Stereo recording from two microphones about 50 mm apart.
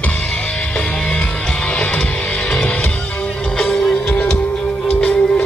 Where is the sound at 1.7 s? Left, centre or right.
Left.